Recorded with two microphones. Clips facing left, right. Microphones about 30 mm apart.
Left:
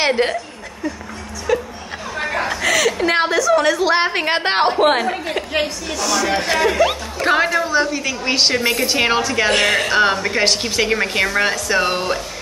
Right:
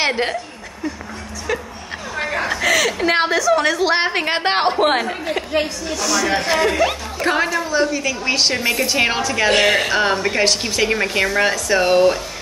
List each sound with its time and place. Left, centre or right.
0.0 s a woman's voice: centre
1.5 s a woman's voice: centre
9.5 s a woman's voice: centre